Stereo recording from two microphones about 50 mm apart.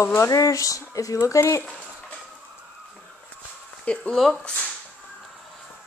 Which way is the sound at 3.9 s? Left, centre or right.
Left.